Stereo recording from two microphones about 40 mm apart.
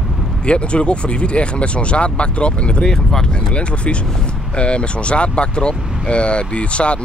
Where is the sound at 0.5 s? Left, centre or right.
Left.